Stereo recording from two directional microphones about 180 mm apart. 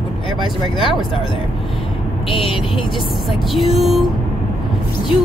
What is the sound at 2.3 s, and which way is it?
Speech, 30° left (ahead or behind).